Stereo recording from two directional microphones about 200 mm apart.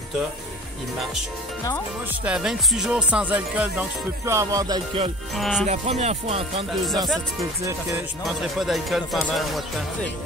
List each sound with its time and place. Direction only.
2.2 s music: 5° right (ahead or behind); by 5.1 s 25° right (ahead or behind)
5.3 s music: centre (ahead or behind)
5.7 s speech: 30° right (ahead or behind)
8.3 s music: centre (ahead or behind)